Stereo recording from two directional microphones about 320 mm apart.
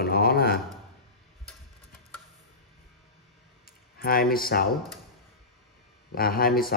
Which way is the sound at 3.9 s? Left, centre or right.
Left.